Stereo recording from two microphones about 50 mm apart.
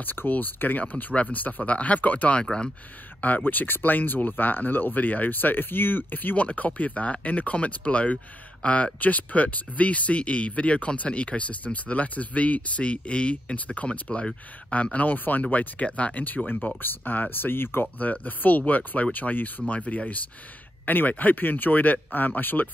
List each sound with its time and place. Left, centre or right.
0.0 s speech: left
17.9 s speech: left